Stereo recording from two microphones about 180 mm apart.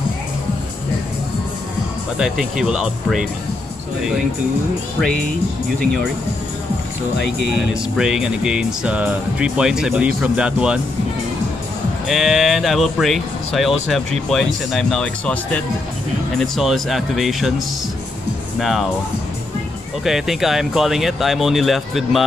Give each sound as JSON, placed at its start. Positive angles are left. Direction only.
{"t": 2.1, "sound": "speech", "side_deg": -5}
{"t": 7.9, "sound": "speech", "side_deg": -5}
{"t": 12.1, "sound": "speech", "side_deg": 0}
{"t": 18.6, "sound": "speech", "side_deg": 0}
{"t": 20.1, "sound": "speech", "side_deg": 0}